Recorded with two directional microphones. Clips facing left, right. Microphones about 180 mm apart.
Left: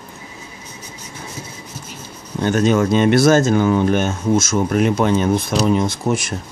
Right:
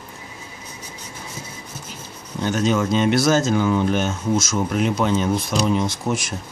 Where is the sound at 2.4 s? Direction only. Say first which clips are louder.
Left 4 dB; 55° left (ahead or behind).